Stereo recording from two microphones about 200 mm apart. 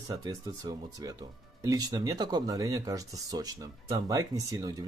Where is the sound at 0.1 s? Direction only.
20° right (ahead or behind).